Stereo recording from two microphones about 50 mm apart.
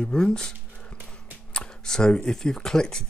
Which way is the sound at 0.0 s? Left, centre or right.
Centre.